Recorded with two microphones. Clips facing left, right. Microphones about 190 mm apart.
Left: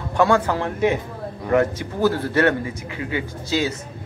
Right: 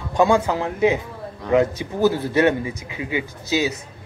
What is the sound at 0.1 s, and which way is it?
A man's voice, 15° right (ahead or behind).